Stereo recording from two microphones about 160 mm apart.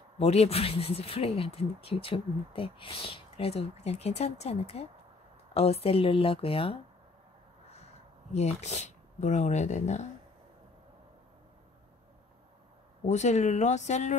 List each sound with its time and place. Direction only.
0.2 s speech: 40° left (ahead or behind)
13.1 s speech: 45° left (ahead or behind)